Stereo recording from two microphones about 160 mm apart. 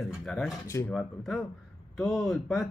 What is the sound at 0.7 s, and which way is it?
Speech, 15° left (ahead or behind).